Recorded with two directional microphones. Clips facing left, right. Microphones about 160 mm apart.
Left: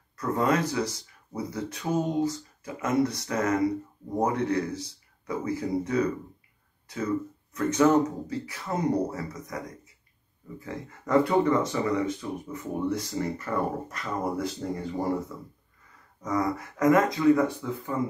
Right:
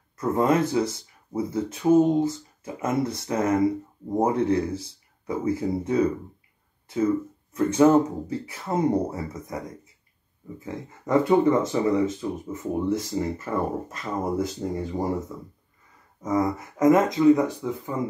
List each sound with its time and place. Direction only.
0.2 s speech: 25° right (ahead or behind)
7.7 s speech: 30° right (ahead or behind)